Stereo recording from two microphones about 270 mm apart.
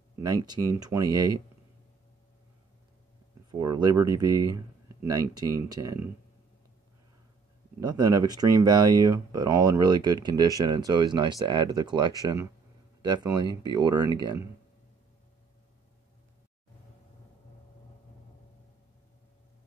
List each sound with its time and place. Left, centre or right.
0.5 s speech: centre
3.5 s speech: centre
7.8 s speech: centre